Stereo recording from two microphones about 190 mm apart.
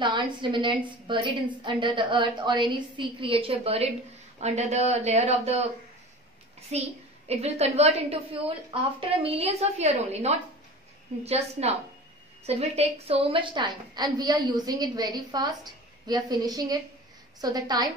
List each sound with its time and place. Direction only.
0.0 s a woman's voice: 25° right (ahead or behind)
6.7 s a woman's voice: 35° right (ahead or behind)